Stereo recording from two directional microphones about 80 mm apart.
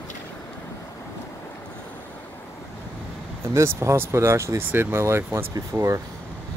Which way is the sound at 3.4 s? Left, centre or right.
Right.